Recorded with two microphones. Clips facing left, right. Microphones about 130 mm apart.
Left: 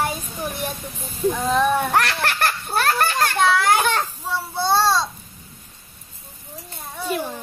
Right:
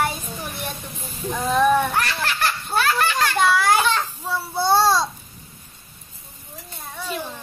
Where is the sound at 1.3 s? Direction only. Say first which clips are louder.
Right 2 dB; centre (ahead or behind).